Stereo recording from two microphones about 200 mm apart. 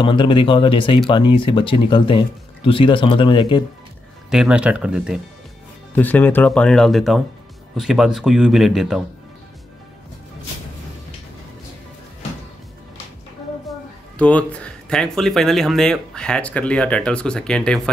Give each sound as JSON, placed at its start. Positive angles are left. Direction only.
{"t": 0.0, "sound": "speech", "side_deg": 25}
{"t": 4.3, "sound": "speech", "side_deg": -5}
{"t": 5.9, "sound": "speech", "side_deg": 10}
{"t": 13.7, "sound": "speech", "side_deg": 5}